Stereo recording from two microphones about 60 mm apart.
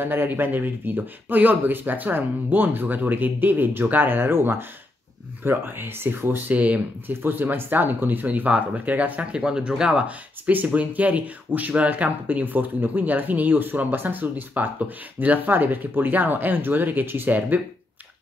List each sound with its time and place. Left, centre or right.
0.0 s speech: right
6.5 s speech: right
7.1 s speech: right